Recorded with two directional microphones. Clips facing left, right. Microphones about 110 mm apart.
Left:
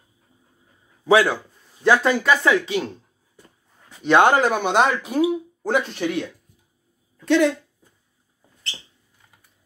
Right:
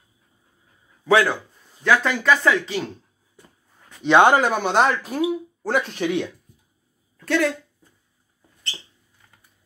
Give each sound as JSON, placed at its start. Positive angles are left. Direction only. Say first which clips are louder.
{"t": 1.0, "sound": "speech", "louder": "left 1 dB", "side_deg": 10}
{"t": 1.8, "sound": "speech", "louder": "left 2 dB", "side_deg": 25}
{"t": 2.2, "sound": "speech", "louder": "even", "side_deg": 5}
{"t": 4.1, "sound": "speech", "louder": "right 1 dB", "side_deg": -15}
{"t": 4.4, "sound": "speech", "louder": "left 1 dB", "side_deg": 5}